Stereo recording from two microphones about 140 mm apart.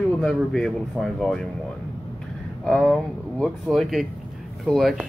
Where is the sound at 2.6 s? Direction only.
Centre (ahead or behind).